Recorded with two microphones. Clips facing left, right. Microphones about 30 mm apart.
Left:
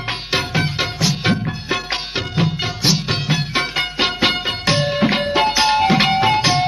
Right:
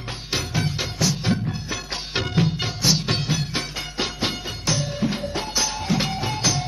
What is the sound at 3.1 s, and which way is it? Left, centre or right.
Music, left.